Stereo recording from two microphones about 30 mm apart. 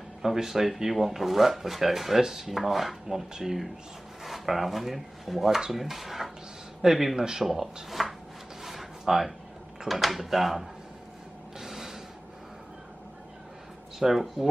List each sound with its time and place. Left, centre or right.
0.2 s speech: centre
7.2 s speech: right
7.4 s speech: centre
11.6 s a sound: centre
13.9 s speech: centre